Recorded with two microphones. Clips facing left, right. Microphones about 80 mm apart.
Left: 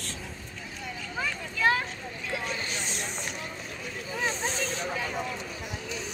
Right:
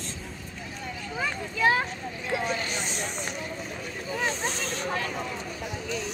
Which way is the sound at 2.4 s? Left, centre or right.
Centre.